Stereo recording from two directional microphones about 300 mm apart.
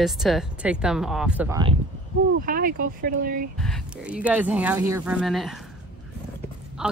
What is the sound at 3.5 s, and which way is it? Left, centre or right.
Speech, centre.